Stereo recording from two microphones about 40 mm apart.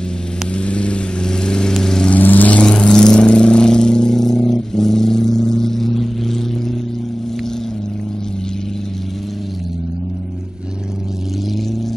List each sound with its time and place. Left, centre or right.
0.6 s vehicle: left
1.7 s lawn mower: centre
2.2 s vehicle: left
2.5 s vehicle: left